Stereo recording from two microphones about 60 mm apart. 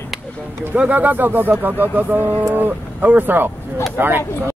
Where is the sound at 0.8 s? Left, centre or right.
Right.